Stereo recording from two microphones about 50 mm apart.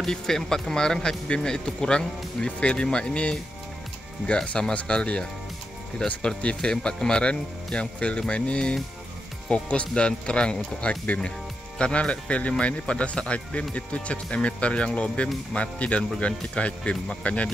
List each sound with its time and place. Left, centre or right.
0.0 s speech: centre
4.7 s speech: left